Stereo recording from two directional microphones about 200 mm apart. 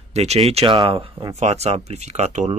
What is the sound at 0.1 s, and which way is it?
Speech, 30° right (ahead or behind).